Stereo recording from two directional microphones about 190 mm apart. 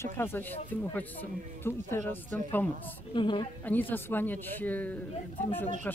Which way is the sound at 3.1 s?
25° left (ahead or behind).